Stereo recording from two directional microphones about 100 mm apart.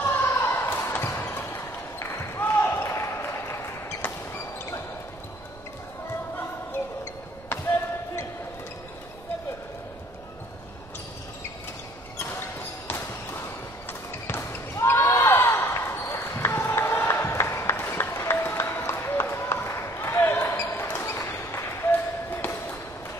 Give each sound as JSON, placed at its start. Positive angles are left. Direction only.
{"t": 0.0, "sound": "basketball bounce", "side_deg": 20}
{"t": 12.2, "sound": "basketball bounce", "side_deg": 25}
{"t": 14.2, "sound": "basketball bounce", "side_deg": 20}
{"t": 21.5, "sound": "a sound", "side_deg": 20}